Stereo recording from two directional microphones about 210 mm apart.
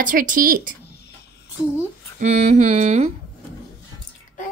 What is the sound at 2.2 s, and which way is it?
Speech, 30° right (ahead or behind).